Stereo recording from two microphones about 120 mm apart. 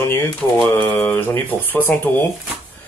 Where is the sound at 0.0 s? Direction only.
20° left (ahead or behind).